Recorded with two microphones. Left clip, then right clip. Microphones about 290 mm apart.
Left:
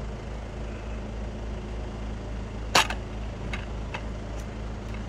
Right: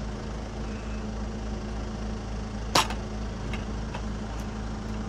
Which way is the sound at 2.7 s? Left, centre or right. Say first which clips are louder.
Left 2 dB; centre.